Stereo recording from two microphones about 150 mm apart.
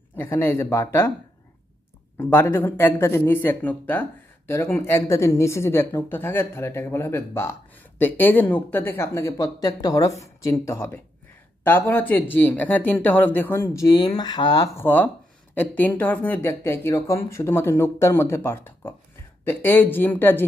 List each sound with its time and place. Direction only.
0.1 s speech: 15° left (ahead or behind)
2.1 s speech: 15° left (ahead or behind)
15.5 s speech: 10° left (ahead or behind)